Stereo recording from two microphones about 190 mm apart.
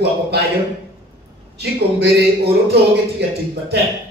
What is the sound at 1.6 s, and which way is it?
A man's voice, 60° right (ahead or behind).